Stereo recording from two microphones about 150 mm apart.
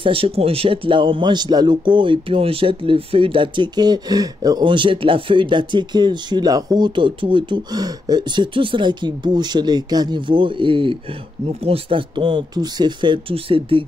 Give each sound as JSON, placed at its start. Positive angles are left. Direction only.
{"t": 0.0, "sound": "a man's voice", "side_deg": -40}